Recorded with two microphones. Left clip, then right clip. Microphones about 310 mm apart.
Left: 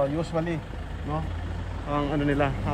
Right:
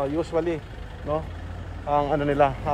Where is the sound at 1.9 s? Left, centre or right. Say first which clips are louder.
Right 4 dB; centre.